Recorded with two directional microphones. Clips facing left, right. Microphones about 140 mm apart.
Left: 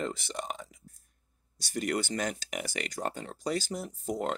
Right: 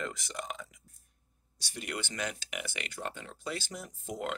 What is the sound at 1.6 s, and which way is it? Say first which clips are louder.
Speech: left 8 dB; 45° left (ahead or behind).